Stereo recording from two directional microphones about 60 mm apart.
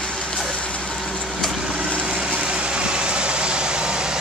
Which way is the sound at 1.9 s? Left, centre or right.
Centre.